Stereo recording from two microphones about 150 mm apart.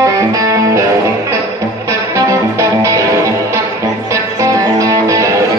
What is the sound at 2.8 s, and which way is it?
Music, 20° right (ahead or behind).